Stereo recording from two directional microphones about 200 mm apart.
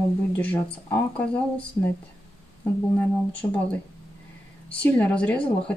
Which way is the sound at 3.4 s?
15° left (ahead or behind).